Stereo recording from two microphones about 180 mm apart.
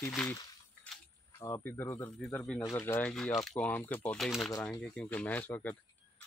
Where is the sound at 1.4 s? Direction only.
15° left (ahead or behind).